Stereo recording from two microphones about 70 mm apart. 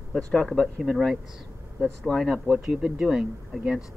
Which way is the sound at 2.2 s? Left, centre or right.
Centre.